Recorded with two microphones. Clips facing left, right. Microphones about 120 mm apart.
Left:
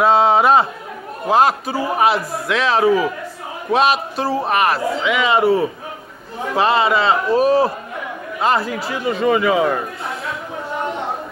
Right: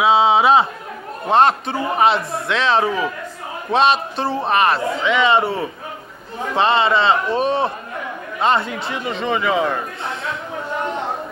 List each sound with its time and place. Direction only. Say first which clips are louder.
0.0 s a man's voice: left 1 dB; centre (ahead or behind)